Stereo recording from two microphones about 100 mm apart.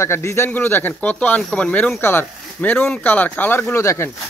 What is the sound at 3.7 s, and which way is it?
Speech, 30° left (ahead or behind).